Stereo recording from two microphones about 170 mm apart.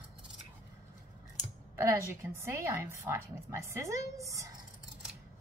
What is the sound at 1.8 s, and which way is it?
A woman's voice, 15° right (ahead or behind).